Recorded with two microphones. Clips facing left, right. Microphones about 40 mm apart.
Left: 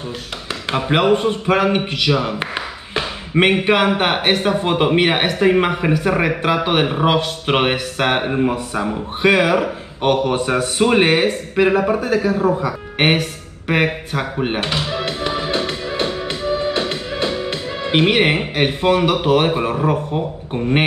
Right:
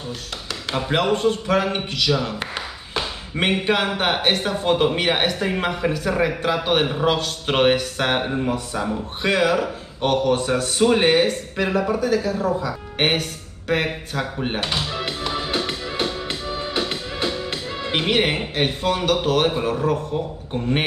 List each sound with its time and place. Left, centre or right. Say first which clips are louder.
0.7 s a man's voice: left 5 dB; left
15.6 s music: left 4 dB; centre
17.3 s speech: left 4 dB; centre